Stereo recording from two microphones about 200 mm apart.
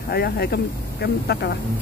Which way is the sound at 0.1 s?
50° left (ahead or behind).